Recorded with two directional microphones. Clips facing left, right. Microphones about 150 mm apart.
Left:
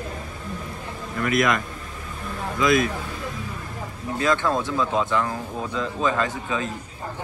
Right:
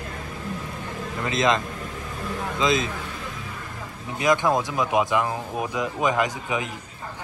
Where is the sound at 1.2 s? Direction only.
25° right (ahead or behind).